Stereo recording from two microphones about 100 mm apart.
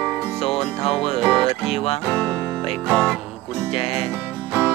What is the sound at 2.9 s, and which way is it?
Music, 5° right (ahead or behind).